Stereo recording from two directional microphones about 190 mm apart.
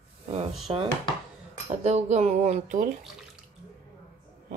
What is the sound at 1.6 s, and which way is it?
Speech, 35° right (ahead or behind).